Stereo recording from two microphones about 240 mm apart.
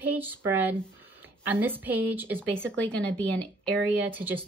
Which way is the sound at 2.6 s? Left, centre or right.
Centre.